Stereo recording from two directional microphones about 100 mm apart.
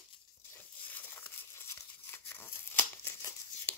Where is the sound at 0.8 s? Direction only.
20° left (ahead or behind).